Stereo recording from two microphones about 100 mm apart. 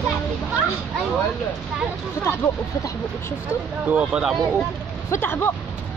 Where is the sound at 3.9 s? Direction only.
10° right (ahead or behind).